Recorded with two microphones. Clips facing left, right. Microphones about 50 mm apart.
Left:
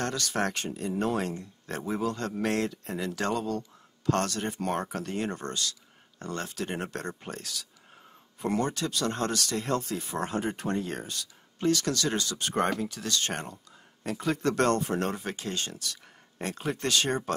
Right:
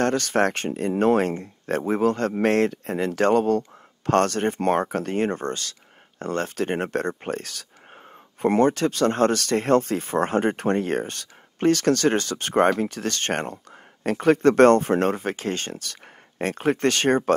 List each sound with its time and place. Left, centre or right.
0.0 s speech: right